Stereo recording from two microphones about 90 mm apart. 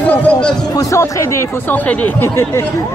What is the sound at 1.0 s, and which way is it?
Speech, 30° left (ahead or behind).